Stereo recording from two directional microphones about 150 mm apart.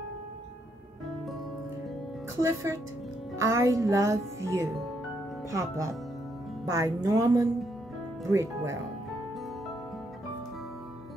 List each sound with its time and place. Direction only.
2.4 s speech: 20° right (ahead or behind)